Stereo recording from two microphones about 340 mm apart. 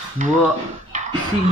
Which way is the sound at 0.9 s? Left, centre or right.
Right.